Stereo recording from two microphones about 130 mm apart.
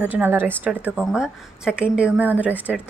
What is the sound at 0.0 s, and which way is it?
A woman's voice, 15° right (ahead or behind).